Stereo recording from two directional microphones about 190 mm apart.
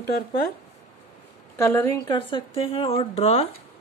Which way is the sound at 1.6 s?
15° left (ahead or behind).